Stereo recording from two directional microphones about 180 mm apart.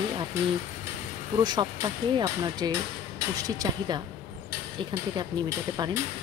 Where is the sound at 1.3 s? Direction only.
20° right (ahead or behind).